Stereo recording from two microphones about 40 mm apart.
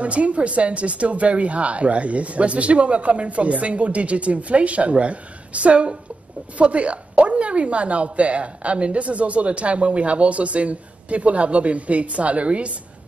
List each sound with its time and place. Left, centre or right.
0.0 s speech: right